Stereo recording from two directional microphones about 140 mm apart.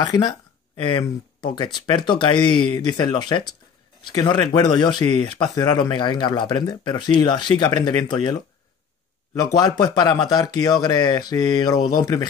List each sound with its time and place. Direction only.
0.0 s speech: 25° left (ahead or behind)
9.3 s speech: 25° left (ahead or behind)